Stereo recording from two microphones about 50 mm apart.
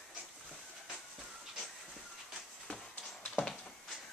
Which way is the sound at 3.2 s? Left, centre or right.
Centre.